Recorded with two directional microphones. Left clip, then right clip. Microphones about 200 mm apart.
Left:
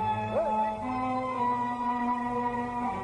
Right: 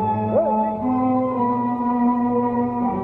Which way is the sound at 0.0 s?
10° left (ahead or behind).